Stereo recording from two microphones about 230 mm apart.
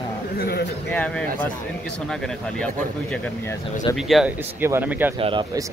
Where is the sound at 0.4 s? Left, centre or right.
Left.